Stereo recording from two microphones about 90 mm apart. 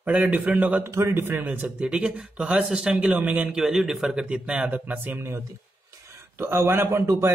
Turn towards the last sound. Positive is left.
turn(degrees=-30)  # may be behind; listen again after turning